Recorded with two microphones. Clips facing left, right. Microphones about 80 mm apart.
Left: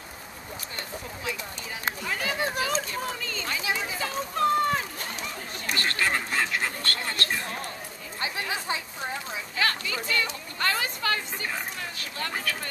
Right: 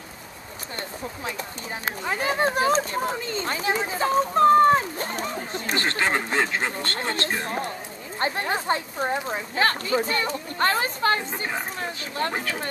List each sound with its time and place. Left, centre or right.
2.0 s speech: right
8.2 s speech: right